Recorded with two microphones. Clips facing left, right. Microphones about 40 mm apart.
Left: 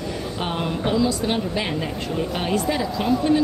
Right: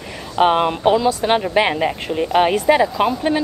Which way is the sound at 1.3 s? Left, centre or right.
Right.